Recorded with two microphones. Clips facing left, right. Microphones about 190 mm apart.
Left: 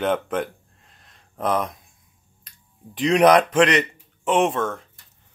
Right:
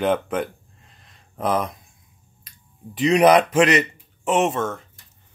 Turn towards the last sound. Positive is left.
turn(degrees=0)  # may be behind; listen again after turning